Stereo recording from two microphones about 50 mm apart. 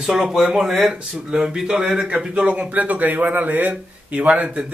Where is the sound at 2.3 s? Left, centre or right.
Right.